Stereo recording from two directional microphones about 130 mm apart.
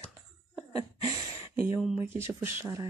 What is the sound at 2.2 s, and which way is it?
Speech, 20° right (ahead or behind).